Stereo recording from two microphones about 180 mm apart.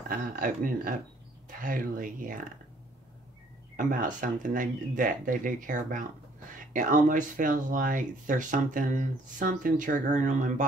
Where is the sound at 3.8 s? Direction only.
45° right (ahead or behind).